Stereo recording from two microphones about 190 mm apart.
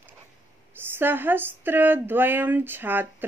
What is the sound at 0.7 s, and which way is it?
A man's voice, 10° right (ahead or behind).